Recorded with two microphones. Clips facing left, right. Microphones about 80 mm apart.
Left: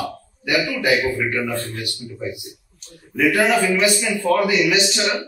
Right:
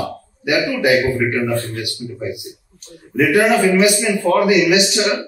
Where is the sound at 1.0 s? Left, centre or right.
Right.